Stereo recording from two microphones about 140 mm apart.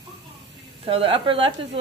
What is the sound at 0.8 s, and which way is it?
Speech, 40° right (ahead or behind).